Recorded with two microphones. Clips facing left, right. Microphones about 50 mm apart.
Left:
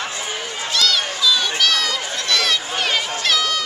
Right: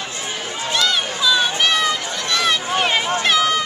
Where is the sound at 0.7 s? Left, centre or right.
Right.